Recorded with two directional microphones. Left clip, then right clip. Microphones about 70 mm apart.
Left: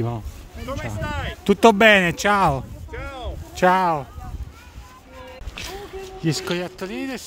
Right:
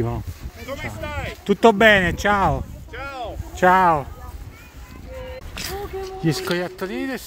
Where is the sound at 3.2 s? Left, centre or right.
Left.